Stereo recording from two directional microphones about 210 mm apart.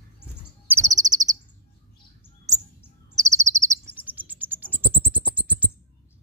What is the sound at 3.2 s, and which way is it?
Chirp, 15° right (ahead or behind).